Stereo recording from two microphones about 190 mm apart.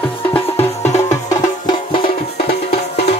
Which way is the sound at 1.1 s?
20° left (ahead or behind).